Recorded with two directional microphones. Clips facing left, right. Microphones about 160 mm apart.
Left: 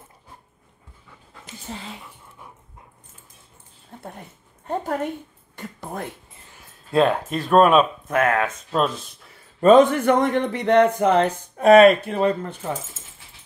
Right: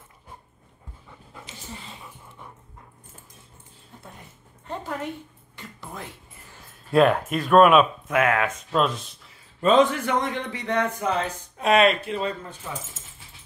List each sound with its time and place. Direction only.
1.7 s speech: 70° left (ahead or behind)
3.9 s dog: 60° left (ahead or behind)
4.6 s a woman's voice: 50° left (ahead or behind)
6.9 s speech: 25° left (ahead or behind); by 12.7 s 55° left (ahead or behind)